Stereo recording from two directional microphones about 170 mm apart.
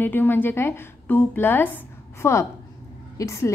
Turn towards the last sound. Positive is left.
turn(degrees=20)  # may be behind; listen again after turning